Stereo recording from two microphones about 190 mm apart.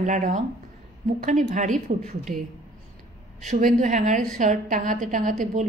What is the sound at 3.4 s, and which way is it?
A woman's voice, 45° right (ahead or behind).